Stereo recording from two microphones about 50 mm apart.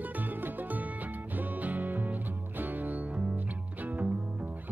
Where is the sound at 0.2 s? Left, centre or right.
Right.